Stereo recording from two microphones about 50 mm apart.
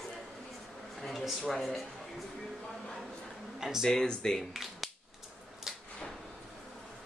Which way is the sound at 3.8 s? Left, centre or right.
Centre.